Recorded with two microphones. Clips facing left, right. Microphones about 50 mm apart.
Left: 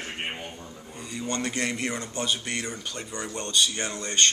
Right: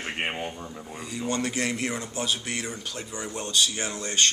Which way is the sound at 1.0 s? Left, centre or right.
Centre.